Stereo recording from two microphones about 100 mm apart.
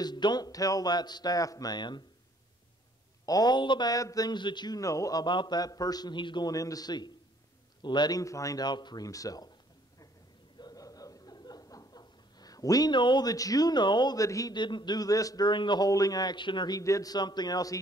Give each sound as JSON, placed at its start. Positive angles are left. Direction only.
{"t": 0.0, "sound": "a man's voice", "side_deg": 45}
{"t": 3.3, "sound": "a man's voice", "side_deg": 40}
{"t": 6.5, "sound": "speech", "side_deg": 35}
{"t": 10.6, "sound": "a sound", "side_deg": 40}
{"t": 14.5, "sound": "a man's voice", "side_deg": 50}